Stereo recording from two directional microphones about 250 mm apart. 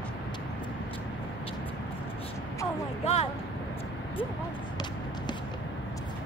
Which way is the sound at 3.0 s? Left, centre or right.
Left.